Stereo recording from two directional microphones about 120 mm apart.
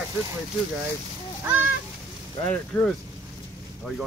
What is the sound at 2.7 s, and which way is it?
Speech, 15° left (ahead or behind).